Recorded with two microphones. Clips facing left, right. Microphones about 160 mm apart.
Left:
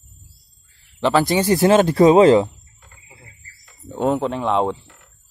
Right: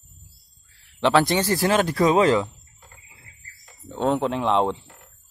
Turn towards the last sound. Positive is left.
turn(degrees=0)  # may be behind; listen again after turning